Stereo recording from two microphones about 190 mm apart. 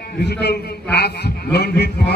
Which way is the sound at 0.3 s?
60° left (ahead or behind).